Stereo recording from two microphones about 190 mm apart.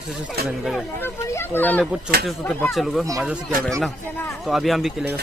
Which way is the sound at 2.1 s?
55° right (ahead or behind).